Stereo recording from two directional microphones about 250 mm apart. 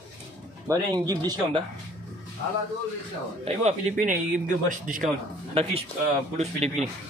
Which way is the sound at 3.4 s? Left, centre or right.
Right.